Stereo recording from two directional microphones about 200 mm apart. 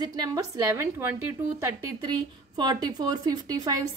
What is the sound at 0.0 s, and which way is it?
A woman's voice, 20° right (ahead or behind).